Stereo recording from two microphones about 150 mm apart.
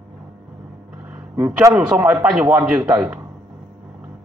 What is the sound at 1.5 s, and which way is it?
Speech, 20° right (ahead or behind).